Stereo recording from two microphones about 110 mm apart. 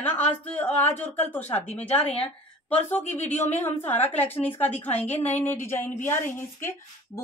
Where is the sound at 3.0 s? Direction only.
90° left.